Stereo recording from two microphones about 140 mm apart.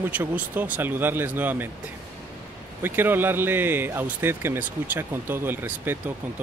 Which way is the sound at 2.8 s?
15° right (ahead or behind).